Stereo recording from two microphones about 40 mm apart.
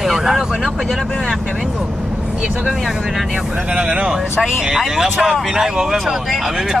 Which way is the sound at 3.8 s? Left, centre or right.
Centre.